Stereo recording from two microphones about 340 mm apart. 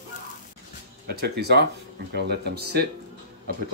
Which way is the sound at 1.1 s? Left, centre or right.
Right.